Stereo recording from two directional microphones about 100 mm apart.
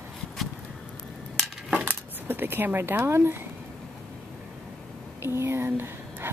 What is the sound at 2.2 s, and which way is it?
Speech, 20° right (ahead or behind).